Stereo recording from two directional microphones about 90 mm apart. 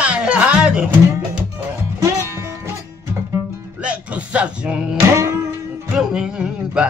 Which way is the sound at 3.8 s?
15° right (ahead or behind).